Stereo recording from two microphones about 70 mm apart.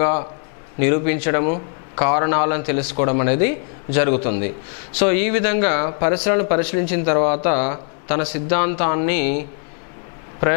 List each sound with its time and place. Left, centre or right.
0.0 s a man's voice: centre